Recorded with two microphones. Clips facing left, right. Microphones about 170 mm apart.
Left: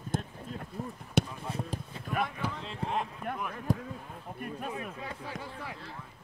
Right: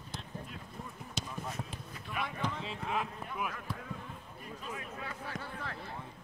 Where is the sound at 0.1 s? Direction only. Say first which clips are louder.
Left 12 dB; 50° left (ahead or behind).